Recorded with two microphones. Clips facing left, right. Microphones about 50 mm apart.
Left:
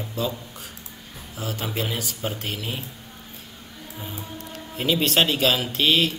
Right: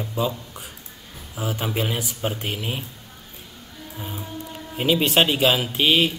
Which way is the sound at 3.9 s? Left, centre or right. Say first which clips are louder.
Right 3 dB; centre.